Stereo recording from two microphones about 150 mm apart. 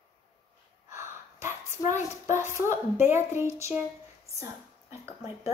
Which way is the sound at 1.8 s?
55° left (ahead or behind).